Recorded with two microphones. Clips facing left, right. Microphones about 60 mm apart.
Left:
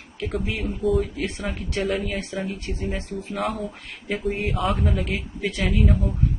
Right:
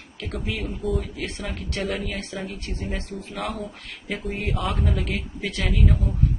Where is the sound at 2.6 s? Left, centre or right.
Left.